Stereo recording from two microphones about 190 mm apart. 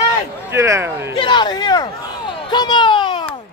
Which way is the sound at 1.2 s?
25° left (ahead or behind).